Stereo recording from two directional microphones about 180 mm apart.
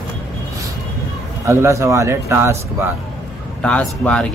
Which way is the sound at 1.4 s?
15° right (ahead or behind).